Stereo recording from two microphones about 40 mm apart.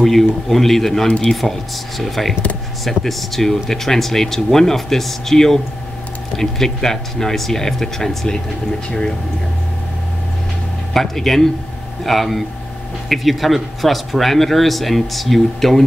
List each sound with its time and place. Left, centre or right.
0.0 s speech: centre
1.0 s speech: left
1.3 s speech: centre
10.9 s speech: centre